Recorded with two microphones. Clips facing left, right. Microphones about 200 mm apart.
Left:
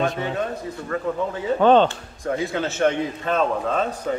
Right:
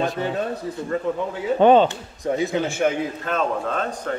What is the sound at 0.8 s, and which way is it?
A man's voice, 15° right (ahead or behind).